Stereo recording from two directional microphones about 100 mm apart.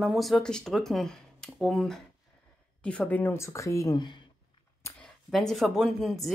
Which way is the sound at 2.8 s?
15° left (ahead or behind).